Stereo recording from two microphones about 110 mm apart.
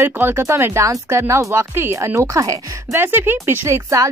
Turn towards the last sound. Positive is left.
turn(degrees=-30)  # may be behind; listen again after turning